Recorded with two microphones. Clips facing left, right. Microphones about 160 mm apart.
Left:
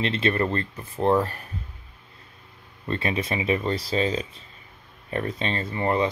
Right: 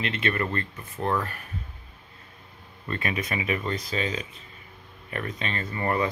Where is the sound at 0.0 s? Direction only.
30° left (ahead or behind).